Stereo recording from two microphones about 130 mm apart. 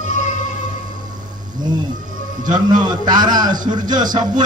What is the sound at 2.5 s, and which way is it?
Speech, 75° right (ahead or behind).